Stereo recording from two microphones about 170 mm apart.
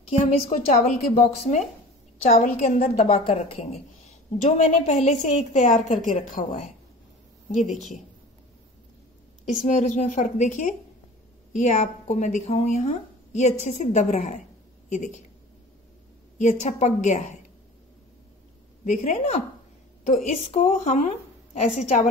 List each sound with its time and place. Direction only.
0.1 s a woman's voice: 40° left (ahead or behind)
9.5 s a woman's voice: 50° left (ahead or behind)
16.3 s a woman's voice: 45° left (ahead or behind)
18.9 s a woman's voice: 45° left (ahead or behind)